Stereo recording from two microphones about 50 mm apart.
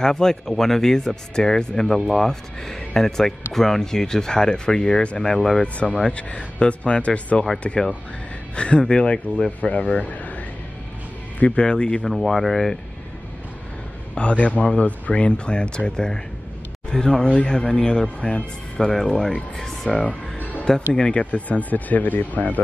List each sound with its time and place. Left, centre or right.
0.0 s speech: centre
5.6 s speech: left
11.3 s speech: left
12.0 s speech: centre
14.1 s speech: left; by 19.9 s centre
19.9 s music: left
20.9 s speech: left